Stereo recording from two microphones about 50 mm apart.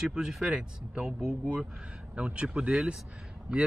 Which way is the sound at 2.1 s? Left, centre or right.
Right.